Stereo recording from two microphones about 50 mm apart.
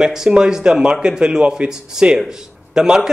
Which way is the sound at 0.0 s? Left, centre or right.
Centre.